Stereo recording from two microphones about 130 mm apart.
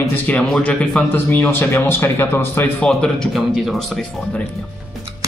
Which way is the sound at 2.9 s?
Centre (ahead or behind).